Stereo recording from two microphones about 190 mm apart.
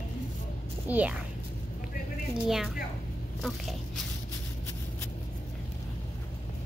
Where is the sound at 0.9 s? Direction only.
10° right (ahead or behind).